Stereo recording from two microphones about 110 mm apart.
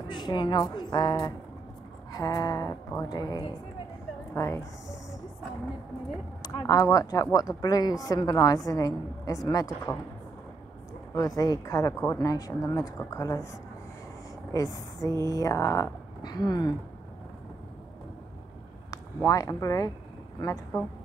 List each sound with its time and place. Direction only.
0.1 s speech: 45° left (ahead or behind); by 4.6 s 25° left (ahead or behind)
6.7 s speech: 30° left (ahead or behind)
9.9 s speech: 20° left (ahead or behind)
11.1 s speech: 30° left (ahead or behind)
16.2 s speech: 40° left (ahead or behind)
18.9 s speech: 30° left (ahead or behind)